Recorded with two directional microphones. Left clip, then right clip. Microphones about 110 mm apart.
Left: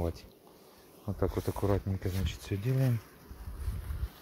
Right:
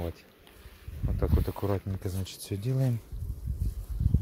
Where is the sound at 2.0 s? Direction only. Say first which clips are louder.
Even; 30° right (ahead or behind).